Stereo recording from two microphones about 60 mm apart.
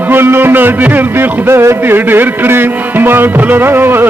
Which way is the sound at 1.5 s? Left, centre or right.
Right.